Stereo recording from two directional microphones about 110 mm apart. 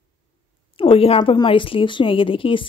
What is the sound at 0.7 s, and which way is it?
A woman's voice, 55° left (ahead or behind).